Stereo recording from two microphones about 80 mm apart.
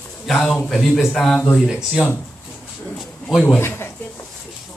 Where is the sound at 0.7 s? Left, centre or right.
Centre.